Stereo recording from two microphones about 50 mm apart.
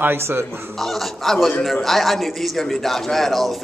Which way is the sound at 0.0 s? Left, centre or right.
Right.